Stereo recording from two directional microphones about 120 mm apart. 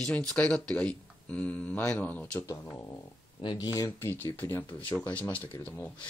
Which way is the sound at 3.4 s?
35° left (ahead or behind).